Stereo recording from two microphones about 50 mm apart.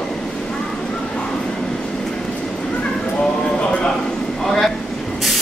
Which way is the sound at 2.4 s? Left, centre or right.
Centre.